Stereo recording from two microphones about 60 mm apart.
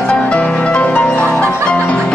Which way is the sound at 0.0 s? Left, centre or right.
Centre.